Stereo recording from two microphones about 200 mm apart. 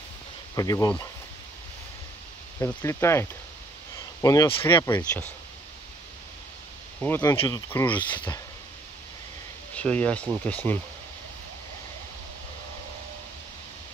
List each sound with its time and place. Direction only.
0.6 s speech: 15° left (ahead or behind)
2.6 s speech: 15° left (ahead or behind)
4.6 s speech: 15° left (ahead or behind)
7.0 s speech: 10° left (ahead or behind)
7.3 s speech: 20° left (ahead or behind)
7.8 s speech: 10° left (ahead or behind)
9.8 s speech: 5° left (ahead or behind)